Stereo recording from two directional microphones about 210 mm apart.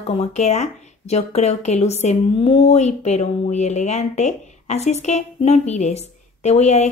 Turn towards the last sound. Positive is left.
turn(degrees=30)  # may be behind; listen again after turning